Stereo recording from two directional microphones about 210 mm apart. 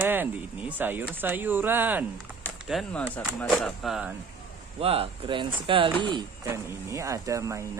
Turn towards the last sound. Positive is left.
turn(degrees=-15)  # may be behind; listen again after turning